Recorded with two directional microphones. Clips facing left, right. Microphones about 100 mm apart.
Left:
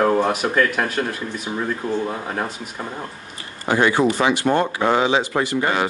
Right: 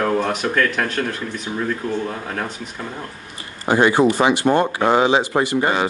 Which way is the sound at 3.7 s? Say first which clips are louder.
Right 2 dB; 25° right (ahead or behind).